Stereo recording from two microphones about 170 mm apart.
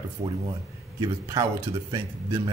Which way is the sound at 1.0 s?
20° right (ahead or behind).